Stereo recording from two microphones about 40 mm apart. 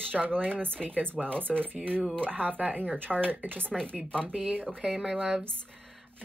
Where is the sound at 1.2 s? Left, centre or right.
Left.